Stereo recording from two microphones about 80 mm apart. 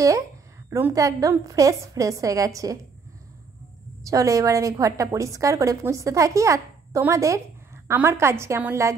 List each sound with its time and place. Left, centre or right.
0.7 s a woman's voice: right
0.9 s a woman's voice: right
4.0 s a woman's voice: right